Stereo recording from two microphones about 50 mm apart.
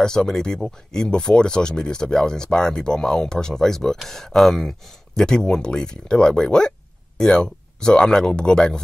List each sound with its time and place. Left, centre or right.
0.0 s speech: centre